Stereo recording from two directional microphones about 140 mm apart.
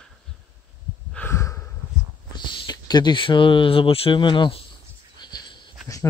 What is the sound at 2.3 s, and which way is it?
Speech, 30° left (ahead or behind).